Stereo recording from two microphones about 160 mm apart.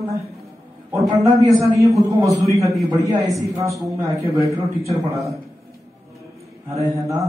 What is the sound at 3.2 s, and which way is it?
A man's voice, 20° right (ahead or behind).